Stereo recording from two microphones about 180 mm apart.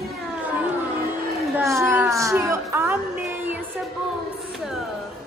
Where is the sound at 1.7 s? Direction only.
15° right (ahead or behind).